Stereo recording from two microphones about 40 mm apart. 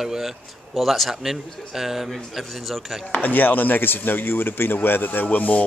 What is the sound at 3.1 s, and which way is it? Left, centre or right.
Speech, left.